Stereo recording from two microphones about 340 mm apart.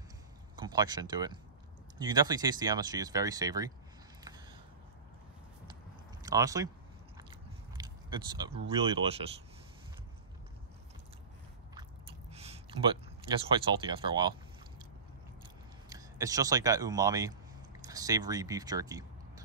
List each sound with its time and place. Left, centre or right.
0.6 s speech: centre
4.2 s a sound: centre
6.2 s speech: centre
7.7 s a sound: centre
11.7 s chewing: centre
15.9 s speech: centre